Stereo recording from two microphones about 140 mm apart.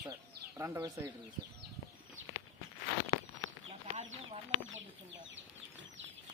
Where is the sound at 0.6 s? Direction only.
25° right (ahead or behind).